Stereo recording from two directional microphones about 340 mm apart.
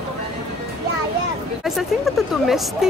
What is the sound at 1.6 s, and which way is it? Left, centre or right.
Speech, centre.